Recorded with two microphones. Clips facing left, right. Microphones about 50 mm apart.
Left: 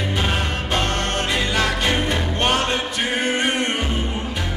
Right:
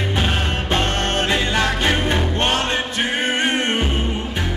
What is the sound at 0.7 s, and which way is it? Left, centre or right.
Music, right.